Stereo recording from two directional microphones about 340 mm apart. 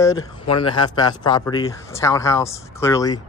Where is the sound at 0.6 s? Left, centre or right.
Centre.